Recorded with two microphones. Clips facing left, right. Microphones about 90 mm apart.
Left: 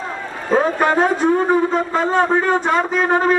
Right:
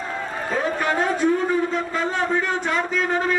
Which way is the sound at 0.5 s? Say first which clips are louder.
Left 8 dB; 45° left (ahead or behind).